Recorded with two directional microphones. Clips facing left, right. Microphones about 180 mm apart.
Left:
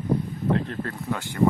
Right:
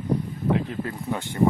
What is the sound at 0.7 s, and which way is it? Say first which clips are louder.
Speech: right 1 dB; 15° right (ahead or behind).